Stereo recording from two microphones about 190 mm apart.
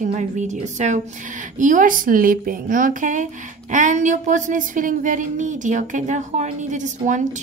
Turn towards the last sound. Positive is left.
turn(degrees=-40)  # may be behind; listen again after turning